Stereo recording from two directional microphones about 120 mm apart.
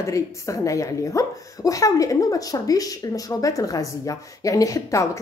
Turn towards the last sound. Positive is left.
turn(degrees=25)  # may be behind; listen again after turning